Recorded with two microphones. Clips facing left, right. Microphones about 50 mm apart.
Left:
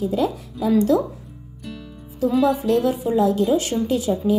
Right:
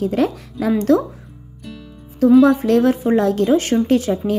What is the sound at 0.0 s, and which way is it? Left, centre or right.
Speech, right.